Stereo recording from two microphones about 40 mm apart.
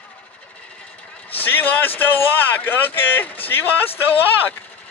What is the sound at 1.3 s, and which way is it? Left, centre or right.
Speech, left.